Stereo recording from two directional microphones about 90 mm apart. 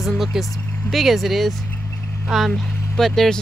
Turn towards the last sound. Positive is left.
turn(degrees=5)  # may be behind; listen again after turning